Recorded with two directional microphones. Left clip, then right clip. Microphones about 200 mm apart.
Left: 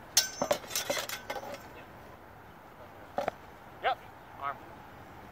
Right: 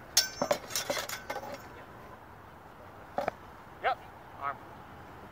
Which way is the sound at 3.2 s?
5° left (ahead or behind).